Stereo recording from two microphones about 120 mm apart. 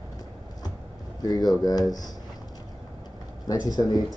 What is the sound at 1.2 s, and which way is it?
Speech, 35° left (ahead or behind).